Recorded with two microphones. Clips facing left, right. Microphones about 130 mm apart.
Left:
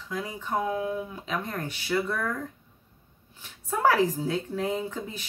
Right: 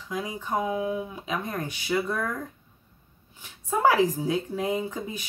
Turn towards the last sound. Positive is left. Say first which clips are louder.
# right 2 dB
turn(degrees=-15)  # may be behind; listen again after turning